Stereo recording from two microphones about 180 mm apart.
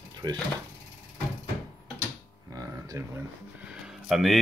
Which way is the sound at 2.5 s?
20° right (ahead or behind).